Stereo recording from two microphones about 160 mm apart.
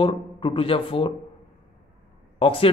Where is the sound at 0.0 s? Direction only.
35° left (ahead or behind).